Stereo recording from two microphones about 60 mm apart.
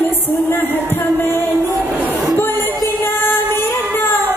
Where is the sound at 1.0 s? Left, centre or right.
Left.